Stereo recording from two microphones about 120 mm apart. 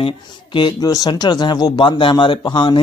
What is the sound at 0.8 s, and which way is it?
A man's voice, 30° left (ahead or behind).